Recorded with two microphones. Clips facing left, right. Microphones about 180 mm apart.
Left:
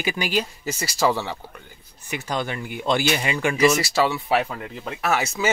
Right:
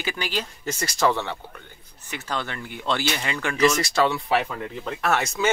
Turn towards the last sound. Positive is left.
turn(degrees=5)  # may be behind; listen again after turning